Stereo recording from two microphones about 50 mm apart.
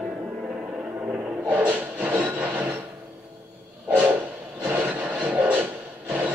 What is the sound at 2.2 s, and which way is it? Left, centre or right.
Wood, right.